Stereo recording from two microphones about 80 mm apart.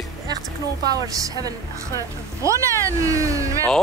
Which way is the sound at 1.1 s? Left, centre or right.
Right.